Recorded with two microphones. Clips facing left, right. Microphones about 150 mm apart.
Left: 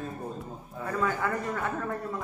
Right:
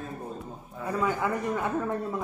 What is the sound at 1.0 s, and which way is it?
Speech, 15° right (ahead or behind).